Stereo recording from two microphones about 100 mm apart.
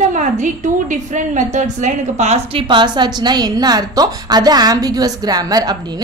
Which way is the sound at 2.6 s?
50° right (ahead or behind).